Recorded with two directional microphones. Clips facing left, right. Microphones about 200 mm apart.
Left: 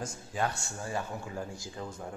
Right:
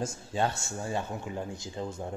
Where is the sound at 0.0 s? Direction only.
25° right (ahead or behind).